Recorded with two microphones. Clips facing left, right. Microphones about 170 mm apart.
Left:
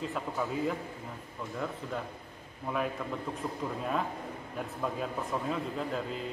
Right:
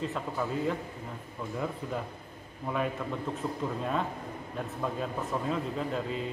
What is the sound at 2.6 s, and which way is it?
A man's voice, centre (ahead or behind).